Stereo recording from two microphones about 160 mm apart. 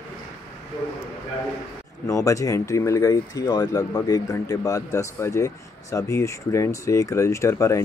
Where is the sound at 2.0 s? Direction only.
20° left (ahead or behind).